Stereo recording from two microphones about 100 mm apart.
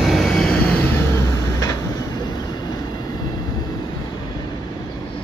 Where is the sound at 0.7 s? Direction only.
25° left (ahead or behind).